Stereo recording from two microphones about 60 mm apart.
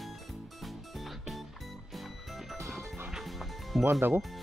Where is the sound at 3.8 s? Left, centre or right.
Right.